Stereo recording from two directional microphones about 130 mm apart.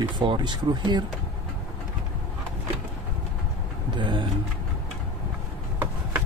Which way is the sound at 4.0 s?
40° right (ahead or behind).